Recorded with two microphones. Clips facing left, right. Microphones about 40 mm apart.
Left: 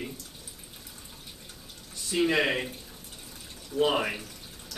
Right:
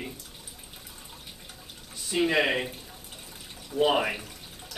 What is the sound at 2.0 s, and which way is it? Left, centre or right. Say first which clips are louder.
Speech: right 1 dB; centre.